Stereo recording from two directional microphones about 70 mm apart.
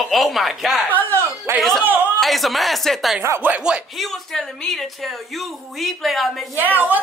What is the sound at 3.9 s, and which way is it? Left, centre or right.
Speech, centre.